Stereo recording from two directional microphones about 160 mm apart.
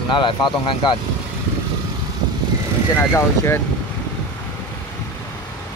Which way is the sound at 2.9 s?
15° left (ahead or behind).